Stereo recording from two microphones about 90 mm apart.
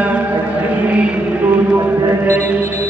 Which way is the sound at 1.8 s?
30° right (ahead or behind).